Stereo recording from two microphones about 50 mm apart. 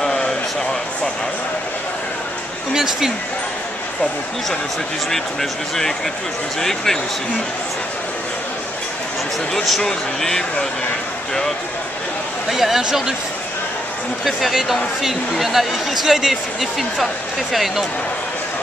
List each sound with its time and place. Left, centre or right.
0.0 s a sound: centre
2.7 s speech: centre
5.1 s speech: centre
9.7 s speech: centre
12.4 s speech: centre
14.2 s speech: centre